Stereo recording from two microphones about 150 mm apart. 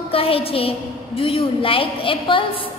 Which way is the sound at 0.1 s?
40° left (ahead or behind).